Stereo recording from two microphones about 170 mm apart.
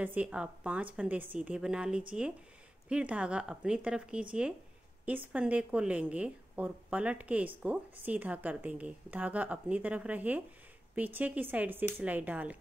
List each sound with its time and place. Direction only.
0.0 s a woman's voice: 10° right (ahead or behind)